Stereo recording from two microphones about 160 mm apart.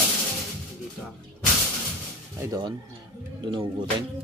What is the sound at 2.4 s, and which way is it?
Speech, 25° right (ahead or behind).